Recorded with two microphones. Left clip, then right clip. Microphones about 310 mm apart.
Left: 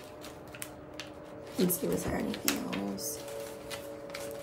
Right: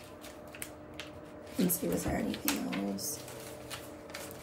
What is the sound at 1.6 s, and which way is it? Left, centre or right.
Speech, centre.